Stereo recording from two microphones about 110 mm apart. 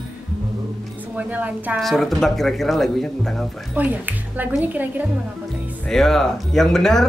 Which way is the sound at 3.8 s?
15° right (ahead or behind).